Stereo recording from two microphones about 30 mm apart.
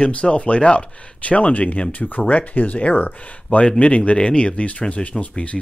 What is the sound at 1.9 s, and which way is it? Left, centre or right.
Speech, left.